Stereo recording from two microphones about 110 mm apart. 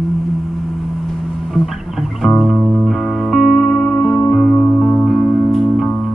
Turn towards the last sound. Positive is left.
turn(degrees=0)  # may be behind; listen again after turning